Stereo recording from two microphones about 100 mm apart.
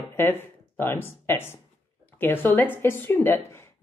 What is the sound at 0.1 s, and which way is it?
A woman's voice, 20° left (ahead or behind).